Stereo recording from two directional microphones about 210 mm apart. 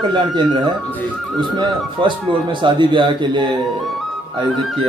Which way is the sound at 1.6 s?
25° right (ahead or behind).